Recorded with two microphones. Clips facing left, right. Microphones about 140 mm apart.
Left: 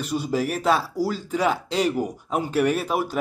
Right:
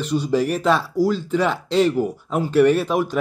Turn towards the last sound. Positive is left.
turn(degrees=10)  # may be behind; listen again after turning